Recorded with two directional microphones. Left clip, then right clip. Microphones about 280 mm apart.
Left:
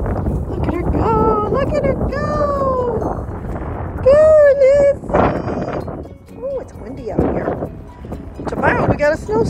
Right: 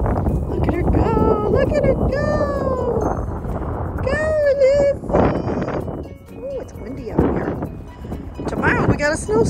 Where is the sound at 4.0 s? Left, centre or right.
Centre.